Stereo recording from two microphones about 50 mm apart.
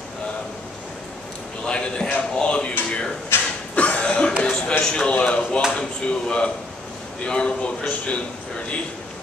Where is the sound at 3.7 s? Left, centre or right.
Left.